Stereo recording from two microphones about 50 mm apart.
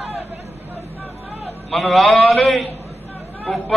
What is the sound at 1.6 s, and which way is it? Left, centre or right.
A man's voice, centre.